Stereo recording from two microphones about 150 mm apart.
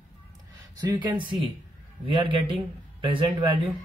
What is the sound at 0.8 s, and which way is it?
Speech, 25° right (ahead or behind).